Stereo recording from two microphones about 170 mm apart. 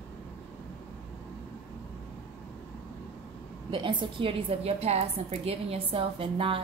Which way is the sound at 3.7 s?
30° right (ahead or behind).